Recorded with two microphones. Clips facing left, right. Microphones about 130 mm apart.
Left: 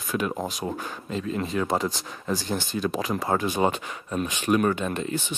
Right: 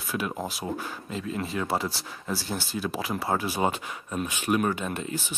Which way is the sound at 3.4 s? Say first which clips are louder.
Left 3 dB; 10° right (ahead or behind).